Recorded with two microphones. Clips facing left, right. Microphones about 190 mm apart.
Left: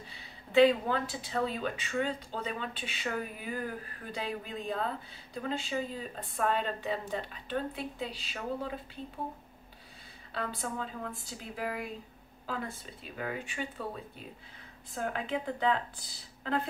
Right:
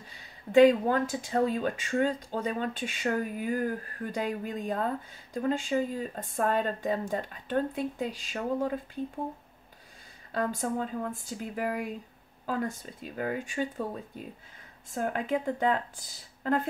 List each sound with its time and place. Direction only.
0.1 s speech: 45° right (ahead or behind)
10.3 s speech: 45° right (ahead or behind)
15.0 s speech: 45° right (ahead or behind)